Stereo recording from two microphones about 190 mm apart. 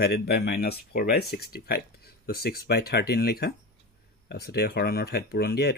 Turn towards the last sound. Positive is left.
turn(degrees=55)  # may be behind; listen again after turning